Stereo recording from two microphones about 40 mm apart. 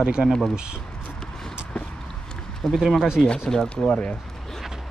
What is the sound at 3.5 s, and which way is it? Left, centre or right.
Speech, centre.